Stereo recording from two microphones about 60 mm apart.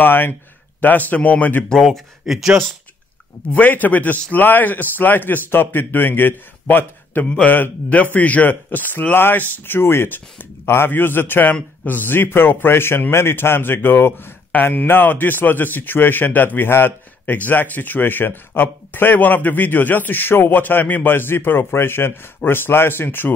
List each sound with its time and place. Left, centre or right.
0.0 s speech: left
1.8 s speech: centre
3.5 s a man's voice: left